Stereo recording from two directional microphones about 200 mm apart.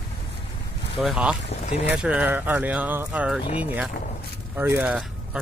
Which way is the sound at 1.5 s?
35° left (ahead or behind).